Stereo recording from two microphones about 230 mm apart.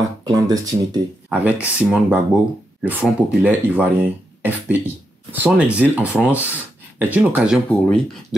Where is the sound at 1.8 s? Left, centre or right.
Centre.